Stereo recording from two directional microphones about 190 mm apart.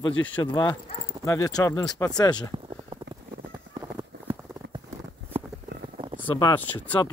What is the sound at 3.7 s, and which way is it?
Clip-clop, 25° right (ahead or behind).